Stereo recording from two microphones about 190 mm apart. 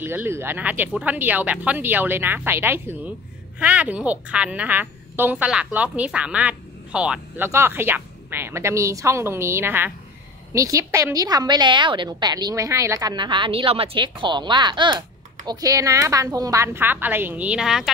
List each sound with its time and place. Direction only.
0.0 s a woman's voice: 10° right (ahead or behind)